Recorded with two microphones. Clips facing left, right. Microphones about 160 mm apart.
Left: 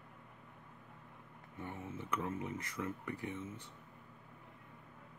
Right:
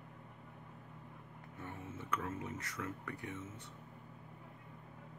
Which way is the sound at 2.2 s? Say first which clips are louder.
Left 2 dB; 20° left (ahead or behind).